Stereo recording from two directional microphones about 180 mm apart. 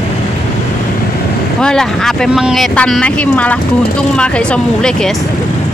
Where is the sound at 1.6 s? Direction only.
5° left (ahead or behind).